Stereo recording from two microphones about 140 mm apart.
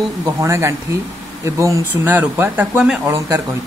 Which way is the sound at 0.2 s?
20° right (ahead or behind).